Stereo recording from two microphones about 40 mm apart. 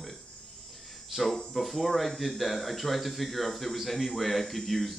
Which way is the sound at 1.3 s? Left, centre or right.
Left.